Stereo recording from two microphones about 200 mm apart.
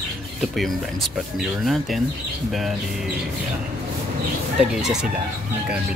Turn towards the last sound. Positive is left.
turn(degrees=-5)  # may be behind; listen again after turning